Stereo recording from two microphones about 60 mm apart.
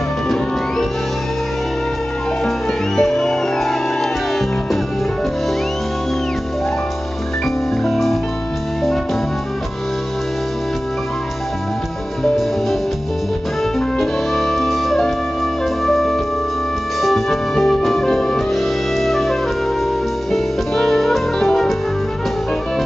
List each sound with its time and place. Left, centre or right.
3.0 s music: centre
7.8 s music: centre
13.7 s music: centre